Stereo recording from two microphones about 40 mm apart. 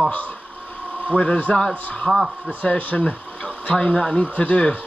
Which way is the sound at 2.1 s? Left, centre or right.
Centre.